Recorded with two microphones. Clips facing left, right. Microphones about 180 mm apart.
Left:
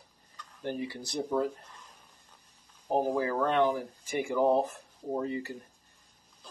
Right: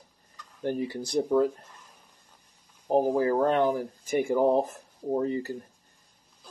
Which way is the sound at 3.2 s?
40° right (ahead or behind).